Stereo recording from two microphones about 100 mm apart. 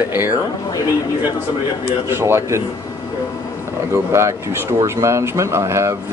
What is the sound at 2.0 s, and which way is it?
Speech, 25° right (ahead or behind).